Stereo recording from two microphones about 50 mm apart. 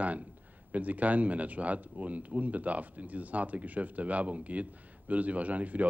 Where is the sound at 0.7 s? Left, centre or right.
Right.